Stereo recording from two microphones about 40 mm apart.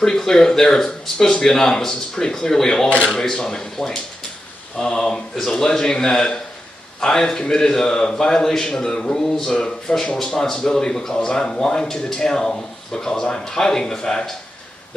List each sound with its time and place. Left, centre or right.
0.0 s speech: centre